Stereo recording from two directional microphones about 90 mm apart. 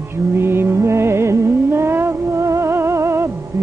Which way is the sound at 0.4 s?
25° right (ahead or behind).